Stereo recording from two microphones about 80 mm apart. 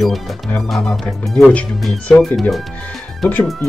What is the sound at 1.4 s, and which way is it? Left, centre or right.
Speech, centre.